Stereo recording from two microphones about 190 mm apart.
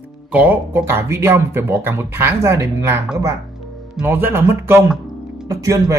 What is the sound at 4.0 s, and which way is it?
Speech, 10° right (ahead or behind).